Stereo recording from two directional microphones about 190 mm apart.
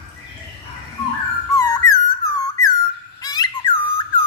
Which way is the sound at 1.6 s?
20° left (ahead or behind).